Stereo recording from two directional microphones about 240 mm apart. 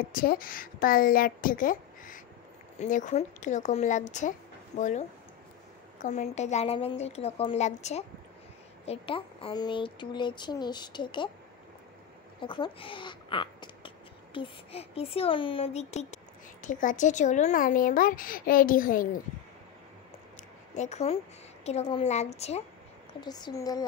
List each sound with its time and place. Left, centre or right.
0.1 s speech: left
6.0 s speech: left
12.4 s speech: centre; by 19.2 s left
20.7 s speech: left
23.2 s speech: centre